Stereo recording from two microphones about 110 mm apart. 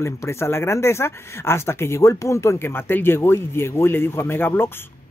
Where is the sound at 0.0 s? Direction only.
25° left (ahead or behind).